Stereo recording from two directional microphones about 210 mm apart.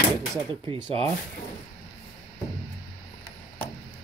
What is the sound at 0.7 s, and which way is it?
Speech, 25° right (ahead or behind).